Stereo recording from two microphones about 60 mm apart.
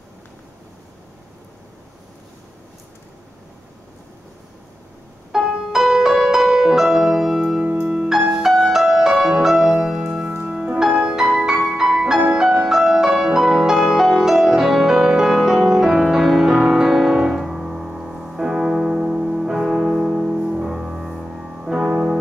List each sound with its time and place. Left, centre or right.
5.3 s music: centre
7.6 s music: right
7.9 s music: centre
17.2 s piano: centre